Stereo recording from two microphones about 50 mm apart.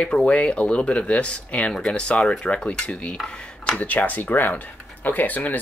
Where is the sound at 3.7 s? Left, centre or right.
Left.